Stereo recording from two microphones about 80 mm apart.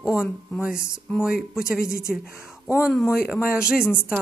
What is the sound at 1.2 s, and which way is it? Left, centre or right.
Speech, centre.